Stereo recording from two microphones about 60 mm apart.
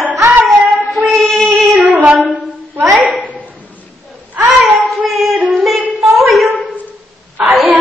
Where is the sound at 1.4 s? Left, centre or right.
Centre.